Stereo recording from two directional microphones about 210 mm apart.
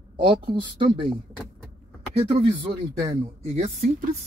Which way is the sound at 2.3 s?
25° right (ahead or behind).